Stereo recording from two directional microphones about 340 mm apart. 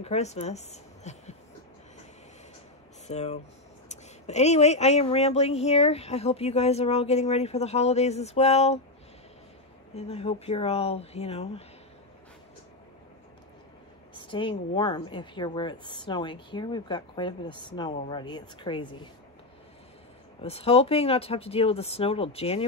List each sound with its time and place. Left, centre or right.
0.0 s speech: centre
3.1 s speech: centre
9.9 s a woman's voice: centre
14.1 s a sound: centre
14.8 s a woman's voice: centre
20.4 s a woman's voice: centre